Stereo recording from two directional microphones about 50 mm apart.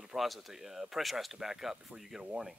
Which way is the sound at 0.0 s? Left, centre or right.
Centre.